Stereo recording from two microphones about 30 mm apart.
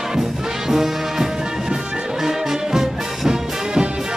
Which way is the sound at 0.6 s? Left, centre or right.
Centre.